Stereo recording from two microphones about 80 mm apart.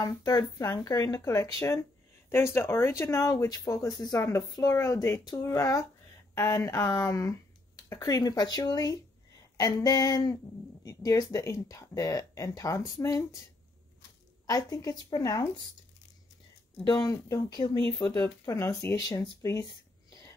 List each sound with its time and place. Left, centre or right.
0.3 s speech: left
4.2 s speech: left
14.4 s a woman's voice: left
16.8 s speech: left
18.0 s speech: left